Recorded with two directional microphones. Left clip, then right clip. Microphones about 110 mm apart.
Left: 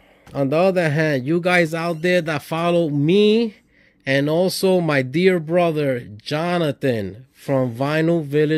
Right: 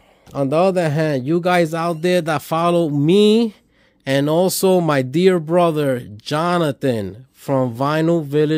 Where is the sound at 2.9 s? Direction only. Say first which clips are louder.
Right 2 dB; 35° right (ahead or behind).